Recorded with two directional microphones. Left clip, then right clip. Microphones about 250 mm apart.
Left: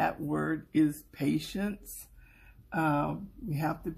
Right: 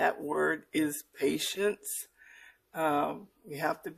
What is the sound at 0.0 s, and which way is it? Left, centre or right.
Speech, right.